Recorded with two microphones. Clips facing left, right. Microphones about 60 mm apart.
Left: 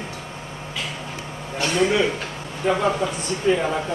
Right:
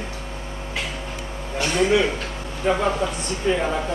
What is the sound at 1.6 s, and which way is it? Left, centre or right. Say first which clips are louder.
A man's voice: right 1 dB; centre.